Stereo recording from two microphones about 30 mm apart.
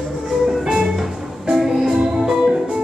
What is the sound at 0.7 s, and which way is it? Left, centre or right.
Music, right.